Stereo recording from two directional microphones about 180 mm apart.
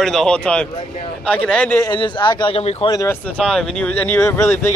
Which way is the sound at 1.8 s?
25° left (ahead or behind).